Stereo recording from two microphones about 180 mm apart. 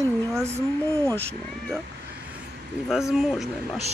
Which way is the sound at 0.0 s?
15° right (ahead or behind).